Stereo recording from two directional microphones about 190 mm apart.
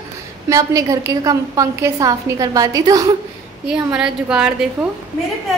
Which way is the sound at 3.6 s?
5° right (ahead or behind).